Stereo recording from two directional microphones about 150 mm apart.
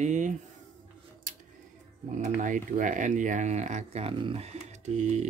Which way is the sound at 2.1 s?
55° right (ahead or behind).